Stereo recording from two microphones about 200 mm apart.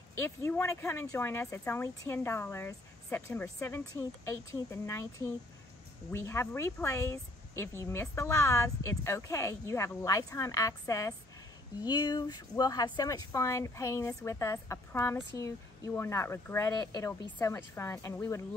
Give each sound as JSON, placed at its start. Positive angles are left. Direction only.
{"t": 0.1, "sound": "speech", "side_deg": 10}